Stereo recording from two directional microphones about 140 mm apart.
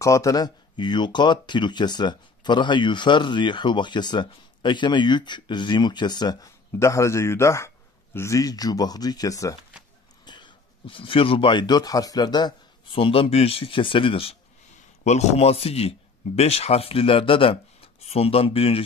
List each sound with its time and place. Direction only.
0.0 s a man's voice: 25° left (ahead or behind); by 14.3 s 40° left (ahead or behind)
15.0 s speech: 50° left (ahead or behind)